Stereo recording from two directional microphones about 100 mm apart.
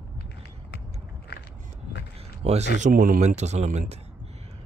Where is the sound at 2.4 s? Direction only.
90° right.